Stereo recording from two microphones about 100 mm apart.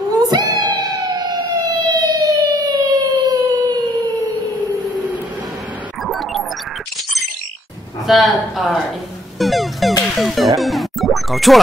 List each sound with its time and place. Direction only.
0.1 s siren: 40° right (ahead or behind)
6.0 s music: centre (ahead or behind)
8.1 s speech: centre (ahead or behind)
9.4 s music: centre (ahead or behind)